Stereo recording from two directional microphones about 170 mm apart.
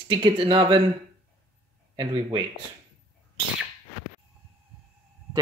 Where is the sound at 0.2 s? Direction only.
30° right (ahead or behind).